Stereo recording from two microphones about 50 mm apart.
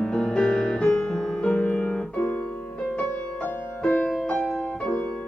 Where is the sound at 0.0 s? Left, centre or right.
Centre.